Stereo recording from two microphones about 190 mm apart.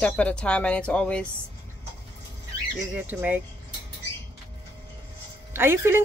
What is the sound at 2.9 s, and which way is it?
Speech, 5° right (ahead or behind).